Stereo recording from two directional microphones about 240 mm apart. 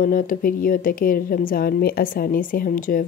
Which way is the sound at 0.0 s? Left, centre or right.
Left.